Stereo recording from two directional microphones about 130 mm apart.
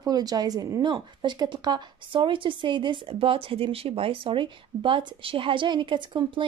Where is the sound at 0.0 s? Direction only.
30° right (ahead or behind).